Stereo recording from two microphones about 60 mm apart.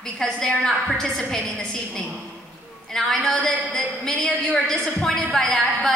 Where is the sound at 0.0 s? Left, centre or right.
Centre.